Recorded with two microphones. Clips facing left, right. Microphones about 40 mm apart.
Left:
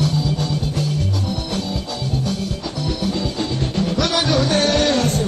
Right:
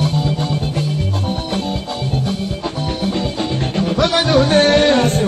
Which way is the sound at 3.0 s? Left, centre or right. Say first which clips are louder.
Right 3 dB; right.